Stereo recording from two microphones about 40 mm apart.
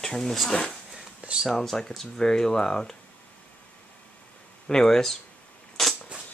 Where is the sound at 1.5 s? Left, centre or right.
Centre.